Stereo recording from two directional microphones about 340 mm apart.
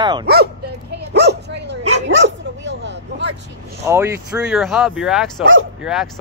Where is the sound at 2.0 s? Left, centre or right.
Right.